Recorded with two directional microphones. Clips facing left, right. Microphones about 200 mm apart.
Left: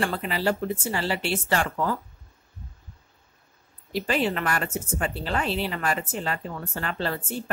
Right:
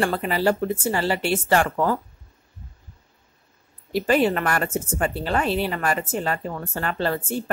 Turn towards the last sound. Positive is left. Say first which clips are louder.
# right 4 dB
turn(degrees=-50)  # may be behind; listen again after turning